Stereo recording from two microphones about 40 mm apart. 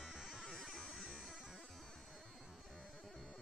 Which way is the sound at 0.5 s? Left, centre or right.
Centre.